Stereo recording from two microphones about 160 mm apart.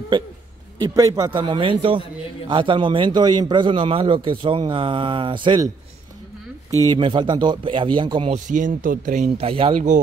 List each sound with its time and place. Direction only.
0.7 s a man's voice: 25° right (ahead or behind)
6.7 s a man's voice: 20° right (ahead or behind)
8.3 s speech: 50° right (ahead or behind)
9.4 s a man's voice: 35° right (ahead or behind)